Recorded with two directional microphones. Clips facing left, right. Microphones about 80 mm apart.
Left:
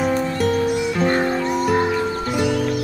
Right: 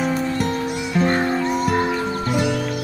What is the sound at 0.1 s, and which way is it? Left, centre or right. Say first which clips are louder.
Music: left 2 dB; centre.